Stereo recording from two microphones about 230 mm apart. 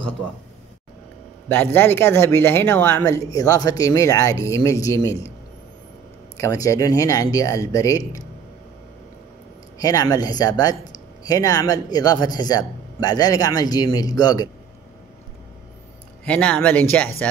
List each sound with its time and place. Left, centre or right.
1.5 s speech: centre
6.3 s speech: centre
9.8 s speech: centre
16.3 s speech: centre